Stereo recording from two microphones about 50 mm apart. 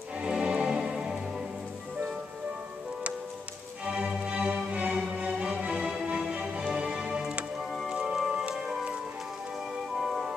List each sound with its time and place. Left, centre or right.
0.2 s music: centre
3.8 s music: right
9.9 s music: centre